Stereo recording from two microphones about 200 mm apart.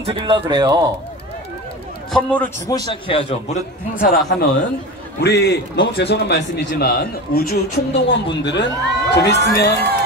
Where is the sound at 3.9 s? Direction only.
50° left (ahead or behind).